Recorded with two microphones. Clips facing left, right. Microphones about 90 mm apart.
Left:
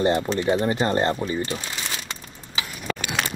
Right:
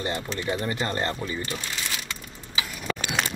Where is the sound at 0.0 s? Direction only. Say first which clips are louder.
Left 8 dB; 25° left (ahead or behind).